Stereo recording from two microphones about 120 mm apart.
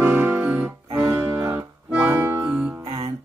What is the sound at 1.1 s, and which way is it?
Music, 25° right (ahead or behind).